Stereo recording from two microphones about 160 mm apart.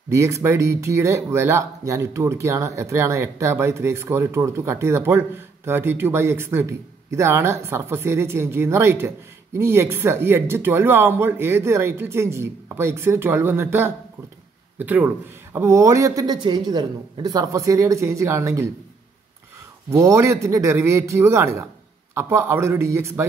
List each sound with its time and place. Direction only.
0.1 s a man's voice: 20° right (ahead or behind)
19.9 s a man's voice: 20° right (ahead or behind)